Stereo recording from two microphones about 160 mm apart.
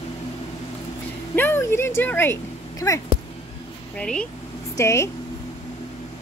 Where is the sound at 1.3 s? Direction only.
15° left (ahead or behind).